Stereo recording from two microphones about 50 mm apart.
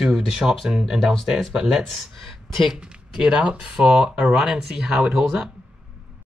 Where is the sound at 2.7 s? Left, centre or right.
Centre.